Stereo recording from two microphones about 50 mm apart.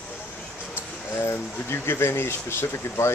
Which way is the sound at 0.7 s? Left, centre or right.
Left.